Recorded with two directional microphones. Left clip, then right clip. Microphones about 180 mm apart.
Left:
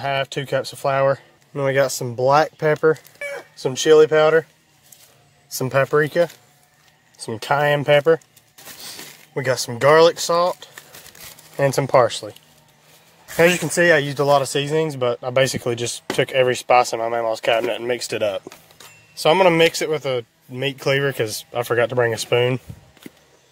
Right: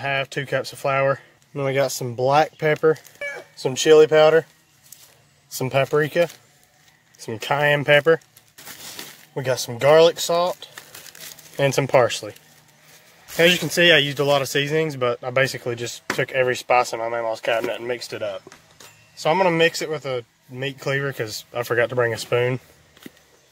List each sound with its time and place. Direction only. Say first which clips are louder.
0.0 s speech: left 2 dB; 5° left (ahead or behind)
5.6 s speech: left 2 dB; 5° left (ahead or behind)
9.3 s speech: left 2 dB; 15° left (ahead or behind)
11.1 s crumpling: right 1 dB; 5° right (ahead or behind)
13.4 s speech: left 1 dB; 5° right (ahead or behind); by 22.6 s 15° left (ahead or behind)